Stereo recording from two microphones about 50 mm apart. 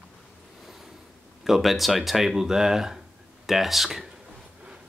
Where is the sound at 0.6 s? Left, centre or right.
Centre.